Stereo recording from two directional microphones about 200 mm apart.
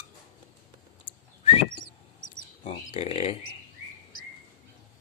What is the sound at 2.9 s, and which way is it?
Speech, 30° left (ahead or behind).